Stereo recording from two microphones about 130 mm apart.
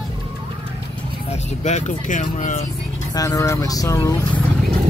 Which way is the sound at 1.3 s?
60° left (ahead or behind).